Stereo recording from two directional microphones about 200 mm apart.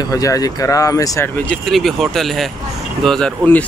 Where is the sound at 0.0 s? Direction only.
15° left (ahead or behind).